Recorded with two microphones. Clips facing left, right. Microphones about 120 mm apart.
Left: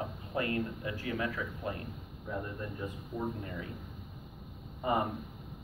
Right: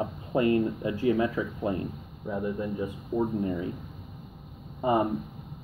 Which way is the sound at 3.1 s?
25° right (ahead or behind).